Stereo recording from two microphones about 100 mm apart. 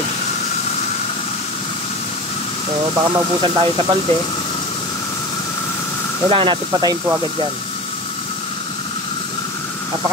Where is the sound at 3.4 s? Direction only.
60° right (ahead or behind).